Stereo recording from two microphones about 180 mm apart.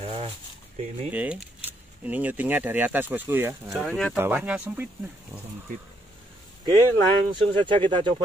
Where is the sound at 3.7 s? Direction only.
Centre (ahead or behind).